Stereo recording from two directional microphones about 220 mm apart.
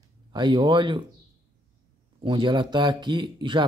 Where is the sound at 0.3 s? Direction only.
20° right (ahead or behind).